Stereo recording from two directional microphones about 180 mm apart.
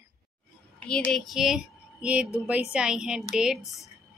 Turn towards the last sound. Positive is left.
turn(degrees=0)  # may be behind; listen again after turning